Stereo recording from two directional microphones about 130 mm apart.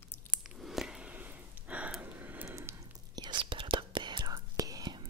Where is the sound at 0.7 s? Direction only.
5° right (ahead or behind).